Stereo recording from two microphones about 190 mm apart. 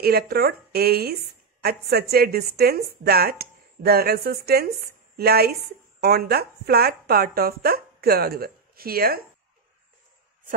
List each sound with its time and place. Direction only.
0.0 s a woman's voice: 55° right (ahead or behind)